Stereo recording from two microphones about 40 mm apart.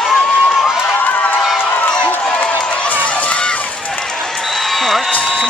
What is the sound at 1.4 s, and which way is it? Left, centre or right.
Run, centre.